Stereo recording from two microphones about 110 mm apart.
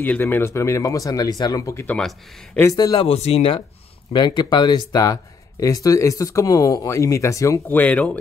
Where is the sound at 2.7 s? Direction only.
35° left (ahead or behind).